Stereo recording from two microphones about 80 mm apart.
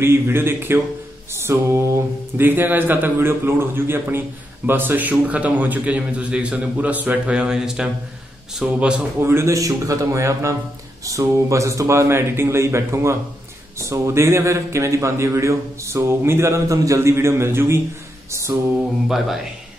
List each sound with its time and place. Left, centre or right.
0.0 s a man's voice: right; by 8.8 s centre
9.2 s a man's voice: right
18.3 s a sound: right
18.8 s mantra: centre